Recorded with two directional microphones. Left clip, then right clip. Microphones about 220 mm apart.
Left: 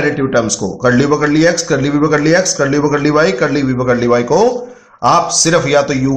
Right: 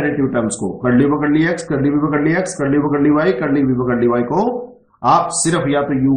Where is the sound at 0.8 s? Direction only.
35° left (ahead or behind).